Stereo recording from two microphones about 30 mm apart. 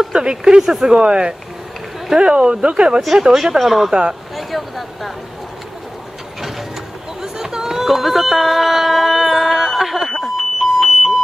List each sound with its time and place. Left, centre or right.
0.1 s speech: right
3.1 s speech: centre
3.5 s speech: centre
7.2 s a sound: centre
10.0 s alarm: centre